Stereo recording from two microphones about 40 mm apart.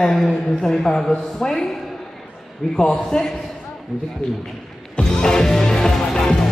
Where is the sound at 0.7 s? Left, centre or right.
Centre.